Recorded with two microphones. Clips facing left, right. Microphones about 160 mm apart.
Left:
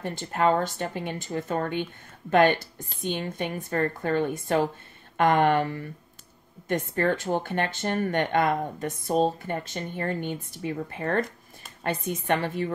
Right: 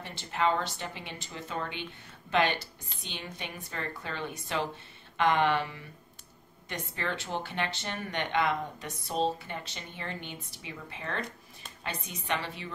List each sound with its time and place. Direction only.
0.0 s speech: 45° left (ahead or behind)